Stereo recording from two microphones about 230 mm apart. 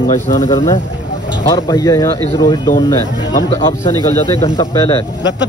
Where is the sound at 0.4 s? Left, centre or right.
Centre.